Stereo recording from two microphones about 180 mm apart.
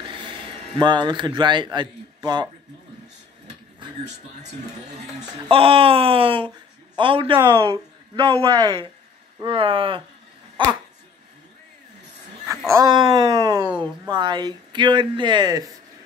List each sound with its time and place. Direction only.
0.7 s a man's voice: 25° right (ahead or behind)
5.5 s a man's voice: 30° right (ahead or behind)
12.7 s a man's voice: 20° right (ahead or behind)